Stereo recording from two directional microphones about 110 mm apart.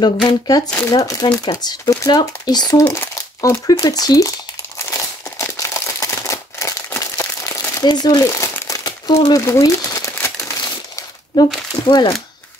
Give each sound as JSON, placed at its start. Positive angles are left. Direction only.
{"t": 0.0, "sound": "speech", "side_deg": 40}
{"t": 3.2, "sound": "crumpling", "side_deg": 30}
{"t": 3.8, "sound": "speech", "side_deg": 35}
{"t": 4.7, "sound": "crumpling", "side_deg": 25}
{"t": 11.3, "sound": "speech", "side_deg": 35}